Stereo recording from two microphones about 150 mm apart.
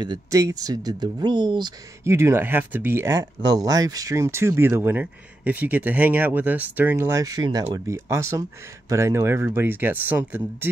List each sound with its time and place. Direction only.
0.0 s speech: 25° right (ahead or behind)
2.0 s speech: 15° right (ahead or behind)
3.3 s speech: 30° right (ahead or behind); by 10.7 s 10° right (ahead or behind)